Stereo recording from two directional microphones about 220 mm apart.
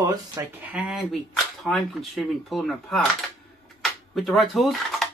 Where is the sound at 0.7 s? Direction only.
5° right (ahead or behind).